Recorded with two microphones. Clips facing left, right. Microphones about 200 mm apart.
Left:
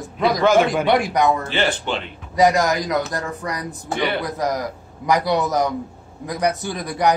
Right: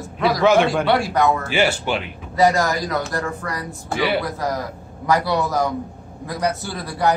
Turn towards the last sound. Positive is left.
turn(degrees=15)  # may be behind; listen again after turning